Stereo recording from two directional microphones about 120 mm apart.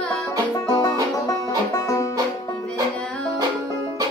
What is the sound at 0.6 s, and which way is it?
Music, 30° left (ahead or behind).